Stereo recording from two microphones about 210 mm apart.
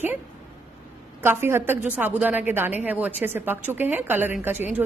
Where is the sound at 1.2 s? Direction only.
10° right (ahead or behind).